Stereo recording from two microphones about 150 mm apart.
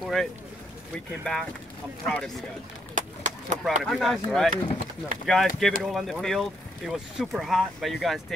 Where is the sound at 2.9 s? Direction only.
55° right (ahead or behind).